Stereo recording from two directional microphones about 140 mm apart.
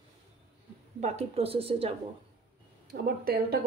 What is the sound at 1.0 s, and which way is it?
Speech, 50° right (ahead or behind).